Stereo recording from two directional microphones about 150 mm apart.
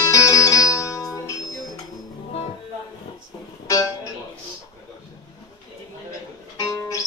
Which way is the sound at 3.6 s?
20° left (ahead or behind).